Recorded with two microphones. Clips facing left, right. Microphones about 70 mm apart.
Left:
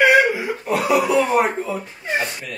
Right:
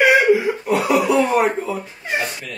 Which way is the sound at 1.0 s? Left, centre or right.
Centre.